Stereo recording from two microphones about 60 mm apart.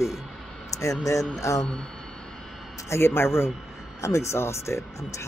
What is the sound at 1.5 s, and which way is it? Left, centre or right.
Speech, left.